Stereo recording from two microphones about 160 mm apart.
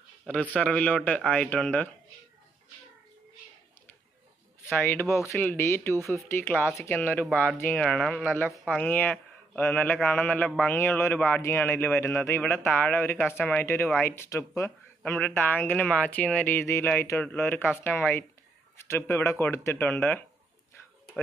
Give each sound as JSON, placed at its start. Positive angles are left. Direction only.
{"t": 0.3, "sound": "speech", "side_deg": 5}
{"t": 5.1, "sound": "speech", "side_deg": 15}